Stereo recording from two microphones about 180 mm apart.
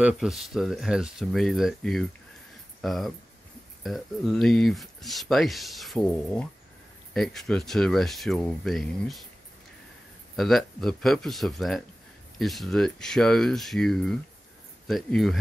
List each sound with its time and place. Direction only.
0.0 s speech: centre (ahead or behind)
10.3 s speech: centre (ahead or behind)